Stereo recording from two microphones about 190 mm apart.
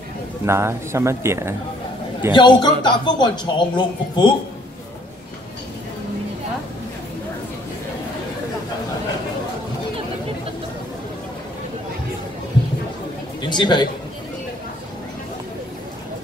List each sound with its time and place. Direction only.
0.5 s speech: 15° right (ahead or behind)
2.3 s a man's voice: 25° left (ahead or behind)
13.4 s a man's voice: 25° left (ahead or behind)